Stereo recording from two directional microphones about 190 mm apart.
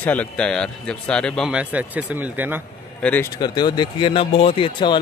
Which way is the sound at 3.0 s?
10° left (ahead or behind).